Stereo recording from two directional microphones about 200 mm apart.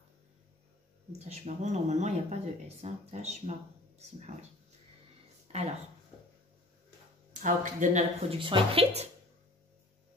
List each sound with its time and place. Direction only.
1.1 s speech: 35° right (ahead or behind)
5.5 s a sound: 30° right (ahead or behind)
7.4 s speech: 40° right (ahead or behind)